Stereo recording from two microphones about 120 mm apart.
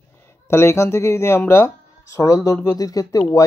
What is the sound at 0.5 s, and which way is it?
Speech, 20° left (ahead or behind).